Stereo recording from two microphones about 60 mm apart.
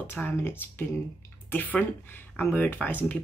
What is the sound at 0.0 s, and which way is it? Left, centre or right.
Speech, left.